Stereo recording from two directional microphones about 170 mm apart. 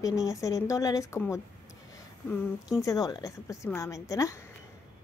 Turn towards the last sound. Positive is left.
turn(degrees=20)  # may be behind; listen again after turning